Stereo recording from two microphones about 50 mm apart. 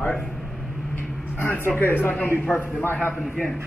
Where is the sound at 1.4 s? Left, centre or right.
Left.